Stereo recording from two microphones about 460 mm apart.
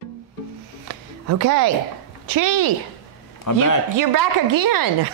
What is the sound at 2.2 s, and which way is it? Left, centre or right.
Speech, right.